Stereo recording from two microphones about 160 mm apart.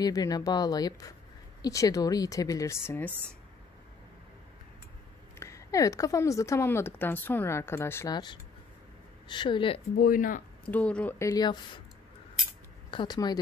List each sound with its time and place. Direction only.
0.0 s a woman's voice: 25° left (ahead or behind)
5.4 s a woman's voice: 20° left (ahead or behind)
9.9 s speech: 60° left (ahead or behind)
10.7 s speech: 5° left (ahead or behind); by 11.8 s 25° left (ahead or behind)
12.9 s a woman's voice: 25° left (ahead or behind)